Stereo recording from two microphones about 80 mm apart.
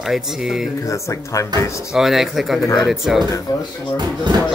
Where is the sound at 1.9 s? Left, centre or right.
Centre.